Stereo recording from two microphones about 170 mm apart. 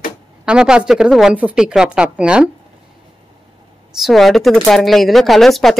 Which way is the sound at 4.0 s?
Centre (ahead or behind).